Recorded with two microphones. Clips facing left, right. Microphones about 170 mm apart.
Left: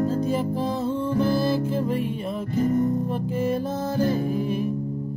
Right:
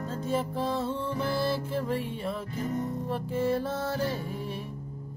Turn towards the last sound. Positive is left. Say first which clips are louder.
# left 8 dB
turn(degrees=40)  # may be behind; listen again after turning